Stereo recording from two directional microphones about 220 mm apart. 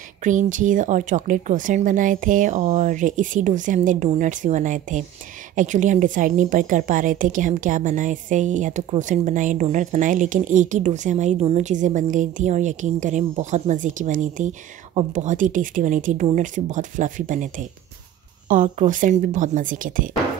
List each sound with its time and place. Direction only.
0.2 s a woman's voice: 35° right (ahead or behind)